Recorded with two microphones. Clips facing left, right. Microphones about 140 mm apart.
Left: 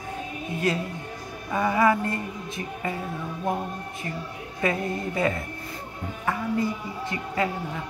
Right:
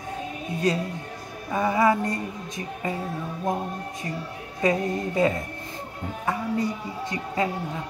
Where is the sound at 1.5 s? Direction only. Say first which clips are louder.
Even; 25° right (ahead or behind).